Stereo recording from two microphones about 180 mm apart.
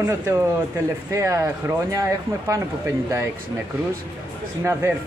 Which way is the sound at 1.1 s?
15° right (ahead or behind).